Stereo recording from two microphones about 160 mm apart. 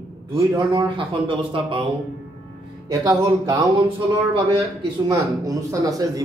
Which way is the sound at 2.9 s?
20° right (ahead or behind).